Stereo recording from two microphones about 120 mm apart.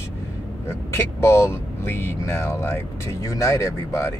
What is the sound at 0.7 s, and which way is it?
Speech, 20° left (ahead or behind).